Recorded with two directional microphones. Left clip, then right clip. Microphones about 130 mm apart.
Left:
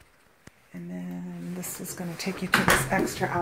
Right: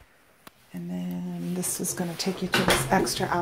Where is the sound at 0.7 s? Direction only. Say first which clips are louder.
Right 3 dB; 20° right (ahead or behind).